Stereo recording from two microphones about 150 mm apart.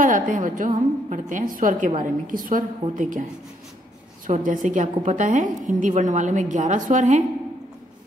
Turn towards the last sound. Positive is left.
turn(degrees=-55)  # may be behind; listen again after turning